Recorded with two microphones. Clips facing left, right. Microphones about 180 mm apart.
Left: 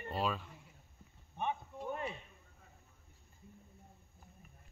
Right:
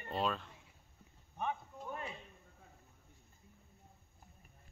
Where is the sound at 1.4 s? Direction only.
25° left (ahead or behind).